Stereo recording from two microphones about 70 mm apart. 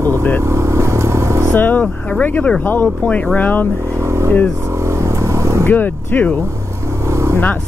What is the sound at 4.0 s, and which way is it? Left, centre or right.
Vehicle, right.